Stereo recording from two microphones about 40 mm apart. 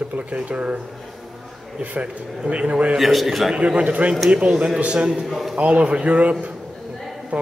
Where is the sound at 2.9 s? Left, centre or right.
Centre.